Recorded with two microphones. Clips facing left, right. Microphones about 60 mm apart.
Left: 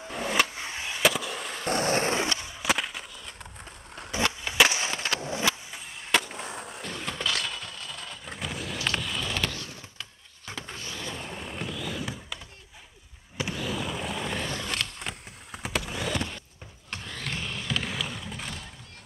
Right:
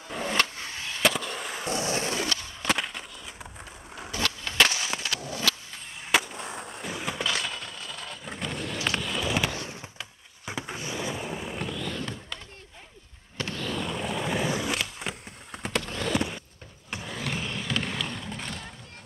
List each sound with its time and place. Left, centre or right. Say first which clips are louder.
0.1 s vehicle: left 1 dB; centre
0.6 s skateboard: left 1 dB; centre
1.0 s fireworks: even; centre
1.7 s skateboard: left 4 dB; left
2.1 s skateboard: left 2 dB; left
2.4 s skateboard: even; centre
4.1 s skateboard: left 2 dB; centre
5.0 s a sound: left 2 dB; left
5.9 s skateboard: right 1 dB; centre
9.6 s vehicle: right 3 dB; right; by 12.4 s centre
13.4 s skateboard: even; centre
16.2 s a sound: right 3 dB; centre
16.9 s skateboard: right 3 dB; centre